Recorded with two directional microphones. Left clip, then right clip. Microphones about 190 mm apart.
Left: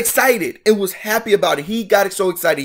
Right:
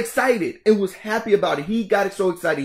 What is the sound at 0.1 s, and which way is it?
Speech, 10° left (ahead or behind).